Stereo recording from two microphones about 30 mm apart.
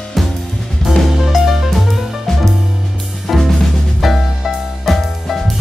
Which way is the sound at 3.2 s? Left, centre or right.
Centre.